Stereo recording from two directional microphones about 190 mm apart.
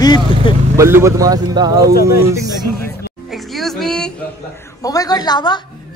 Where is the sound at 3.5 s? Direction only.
Centre (ahead or behind).